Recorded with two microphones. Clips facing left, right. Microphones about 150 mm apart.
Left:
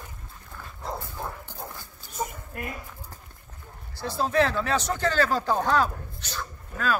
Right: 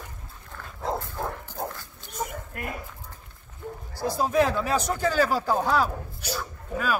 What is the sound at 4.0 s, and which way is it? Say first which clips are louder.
A man's voice: right 1 dB; 10° right (ahead or behind).